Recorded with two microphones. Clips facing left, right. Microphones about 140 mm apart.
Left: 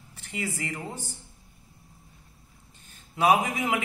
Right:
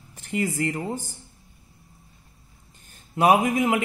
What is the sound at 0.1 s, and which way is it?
Speech, 45° right (ahead or behind).